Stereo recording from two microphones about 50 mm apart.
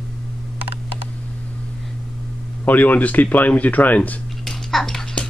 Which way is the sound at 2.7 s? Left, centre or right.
Left.